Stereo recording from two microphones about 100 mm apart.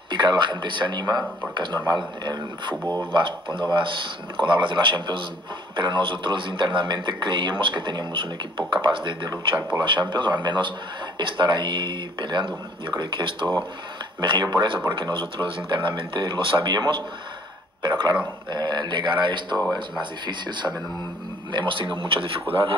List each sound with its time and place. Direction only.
0.1 s a man's voice: 50° right (ahead or behind)
2.7 s speech: 15° left (ahead or behind)
3.1 s a man's voice: 55° right (ahead or behind)
19.5 s speech: centre (ahead or behind)
20.0 s a man's voice: 50° right (ahead or behind)